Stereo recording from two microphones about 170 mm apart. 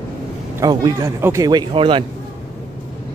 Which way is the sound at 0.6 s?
20° right (ahead or behind).